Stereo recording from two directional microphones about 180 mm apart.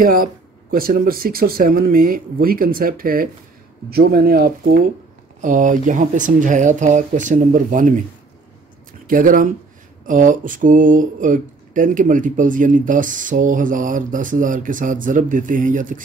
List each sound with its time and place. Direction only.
0.0 s speech: 50° right (ahead or behind)
5.4 s speech: 45° right (ahead or behind)
9.0 s speech: 50° right (ahead or behind)